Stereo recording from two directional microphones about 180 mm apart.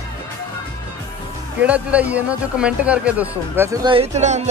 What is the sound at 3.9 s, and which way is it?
Speech, 35° right (ahead or behind).